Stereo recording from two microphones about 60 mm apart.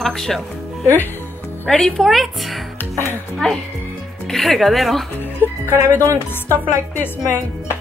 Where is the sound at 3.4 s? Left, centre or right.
Centre.